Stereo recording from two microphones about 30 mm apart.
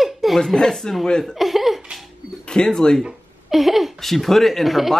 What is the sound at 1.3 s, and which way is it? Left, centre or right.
Giggle, centre.